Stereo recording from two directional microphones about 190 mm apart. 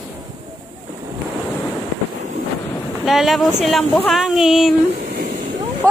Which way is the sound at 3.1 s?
Centre (ahead or behind).